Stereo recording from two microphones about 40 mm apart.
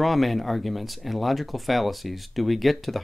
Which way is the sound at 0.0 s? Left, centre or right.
Centre.